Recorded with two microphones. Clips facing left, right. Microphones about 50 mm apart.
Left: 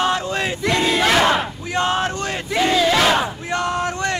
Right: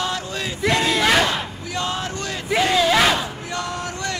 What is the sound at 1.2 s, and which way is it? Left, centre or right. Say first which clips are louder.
Battle cry: left 4 dB; left.